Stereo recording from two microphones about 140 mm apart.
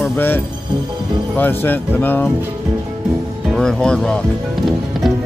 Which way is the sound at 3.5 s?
5° left (ahead or behind).